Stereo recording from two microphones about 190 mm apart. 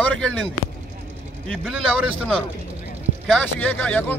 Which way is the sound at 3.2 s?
5° left (ahead or behind).